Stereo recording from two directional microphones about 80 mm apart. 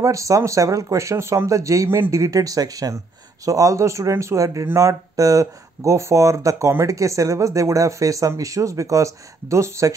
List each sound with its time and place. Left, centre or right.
0.0 s speech: right
1.9 s speech: right
2.1 s speech: right